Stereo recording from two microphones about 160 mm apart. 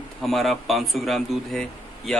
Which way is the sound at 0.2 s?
Centre (ahead or behind).